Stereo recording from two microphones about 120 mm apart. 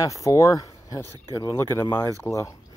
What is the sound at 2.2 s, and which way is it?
Speech, 25° left (ahead or behind).